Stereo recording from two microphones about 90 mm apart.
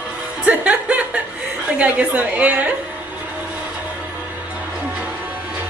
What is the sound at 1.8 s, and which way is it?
Speech, 15° right (ahead or behind).